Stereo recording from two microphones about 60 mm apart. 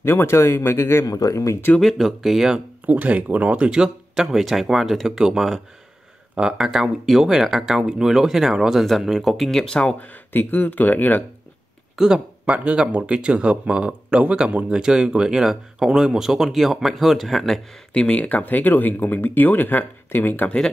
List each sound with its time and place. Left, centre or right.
0.0 s speech: left
1.0 s speech: left
1.8 s speech: centre
2.9 s speech: right; by 9.9 s centre
9.9 s speech: left
12.0 s speech: centre
12.4 s speech: right; by 17.6 s centre
17.9 s speech: left